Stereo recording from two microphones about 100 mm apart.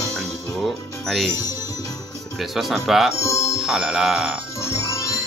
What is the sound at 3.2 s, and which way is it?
Speech, 30° left (ahead or behind).